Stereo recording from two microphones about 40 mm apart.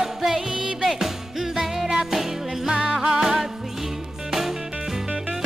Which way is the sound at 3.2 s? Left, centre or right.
Centre.